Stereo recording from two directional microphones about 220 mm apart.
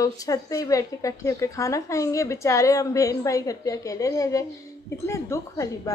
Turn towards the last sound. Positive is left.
turn(degrees=15)  # may be behind; listen again after turning